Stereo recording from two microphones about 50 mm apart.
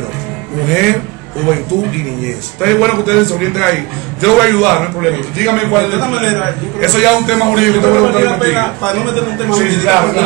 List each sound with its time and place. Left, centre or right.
0.7 s a man's voice: centre
2.6 s a man's voice: centre
5.9 s a man's voice: left
6.8 s a man's voice: centre
7.9 s a man's voice: centre
9.8 s a man's voice: centre